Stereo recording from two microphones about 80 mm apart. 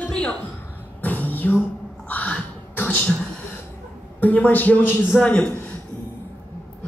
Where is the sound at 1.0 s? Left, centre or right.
Left.